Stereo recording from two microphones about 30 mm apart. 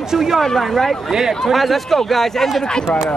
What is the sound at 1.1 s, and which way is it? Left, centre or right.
Speech, centre.